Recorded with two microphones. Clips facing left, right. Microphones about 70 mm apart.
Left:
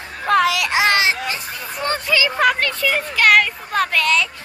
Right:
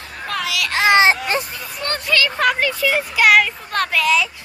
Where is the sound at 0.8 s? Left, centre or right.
Centre.